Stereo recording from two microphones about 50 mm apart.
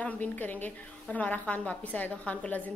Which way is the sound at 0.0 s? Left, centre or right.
Left.